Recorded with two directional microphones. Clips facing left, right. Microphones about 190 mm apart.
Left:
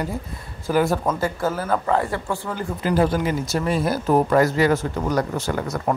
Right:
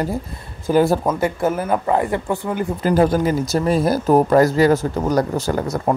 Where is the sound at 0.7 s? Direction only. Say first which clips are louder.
Right 4 dB; 30° right (ahead or behind).